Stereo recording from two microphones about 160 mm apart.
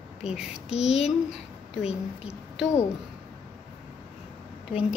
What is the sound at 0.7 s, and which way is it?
Speech, 40° left (ahead or behind).